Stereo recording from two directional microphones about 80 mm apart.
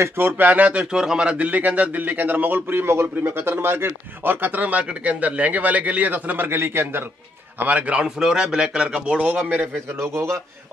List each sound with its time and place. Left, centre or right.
0.0 s speech: right
7.5 s a man's voice: centre
9.9 s a man's voice: right